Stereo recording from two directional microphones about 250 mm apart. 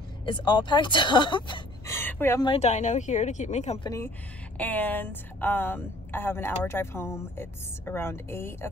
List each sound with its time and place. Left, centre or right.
0.2 s speech: centre
2.5 s speech: left
4.6 s a woman's voice: centre